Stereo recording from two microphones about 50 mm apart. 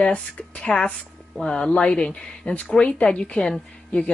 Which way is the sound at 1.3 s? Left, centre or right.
Centre.